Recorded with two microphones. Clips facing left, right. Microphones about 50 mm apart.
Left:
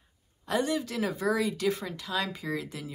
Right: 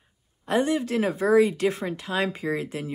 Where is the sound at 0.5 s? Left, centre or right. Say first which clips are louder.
Right 5 dB; right.